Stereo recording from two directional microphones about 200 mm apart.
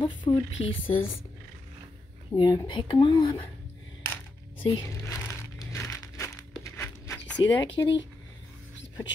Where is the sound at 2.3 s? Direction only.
20° left (ahead or behind).